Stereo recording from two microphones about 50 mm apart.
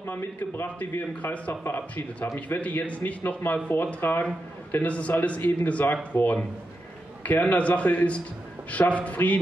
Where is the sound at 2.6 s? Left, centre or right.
Left.